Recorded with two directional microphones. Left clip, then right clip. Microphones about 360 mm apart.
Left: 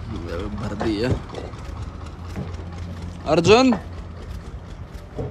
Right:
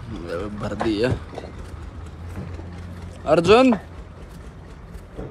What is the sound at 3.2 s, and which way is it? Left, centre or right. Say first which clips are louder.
Speech: right 1 dB; centre.